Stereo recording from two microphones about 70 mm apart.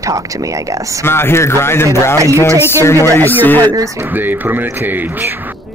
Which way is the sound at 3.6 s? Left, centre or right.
Right.